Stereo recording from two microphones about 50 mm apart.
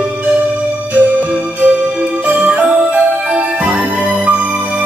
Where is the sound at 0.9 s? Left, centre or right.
Right.